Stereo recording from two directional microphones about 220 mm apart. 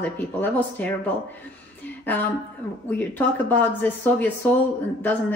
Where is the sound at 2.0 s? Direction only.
10° left (ahead or behind).